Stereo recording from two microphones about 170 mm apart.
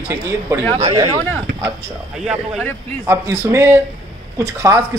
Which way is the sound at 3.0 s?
15° right (ahead or behind).